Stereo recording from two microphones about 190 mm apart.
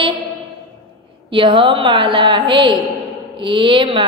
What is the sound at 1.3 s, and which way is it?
A woman's voice, 25° right (ahead or behind).